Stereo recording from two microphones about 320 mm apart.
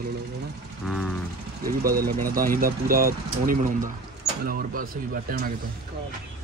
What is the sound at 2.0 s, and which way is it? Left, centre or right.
Speech, right.